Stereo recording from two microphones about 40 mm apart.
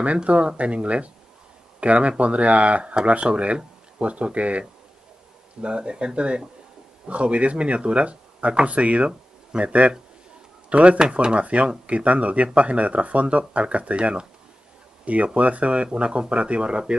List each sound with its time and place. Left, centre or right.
0.0 s speech: right
5.6 s speech: right